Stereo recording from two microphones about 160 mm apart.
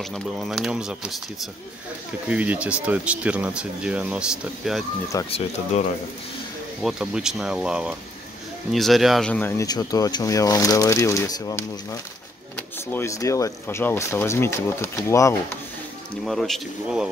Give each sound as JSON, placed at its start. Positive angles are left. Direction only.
{"t": 0.0, "sound": "speech", "side_deg": 0}
{"t": 5.3, "sound": "speech", "side_deg": 40}
{"t": 6.8, "sound": "speech", "side_deg": -5}
{"t": 9.7, "sound": "speech", "side_deg": 25}
{"t": 16.3, "sound": "speech", "side_deg": 0}